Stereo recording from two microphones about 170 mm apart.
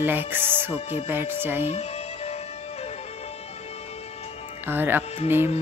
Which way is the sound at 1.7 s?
40° left (ahead or behind).